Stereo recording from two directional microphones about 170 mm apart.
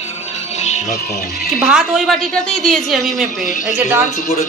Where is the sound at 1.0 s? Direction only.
65° left (ahead or behind).